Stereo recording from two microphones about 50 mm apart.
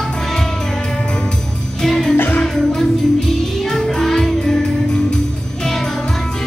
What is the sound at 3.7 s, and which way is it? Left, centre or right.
Music, centre.